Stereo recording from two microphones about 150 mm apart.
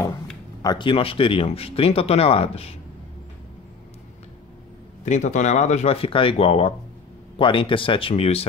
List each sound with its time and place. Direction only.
0.6 s speech: 30° left (ahead or behind)
5.0 s speech: 50° left (ahead or behind)